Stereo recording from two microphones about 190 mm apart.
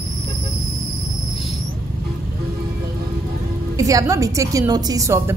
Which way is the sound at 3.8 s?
15° right (ahead or behind).